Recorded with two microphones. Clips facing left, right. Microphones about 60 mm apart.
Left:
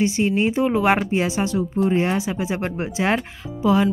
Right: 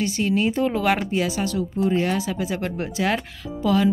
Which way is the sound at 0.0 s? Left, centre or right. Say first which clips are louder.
Left 2 dB; left.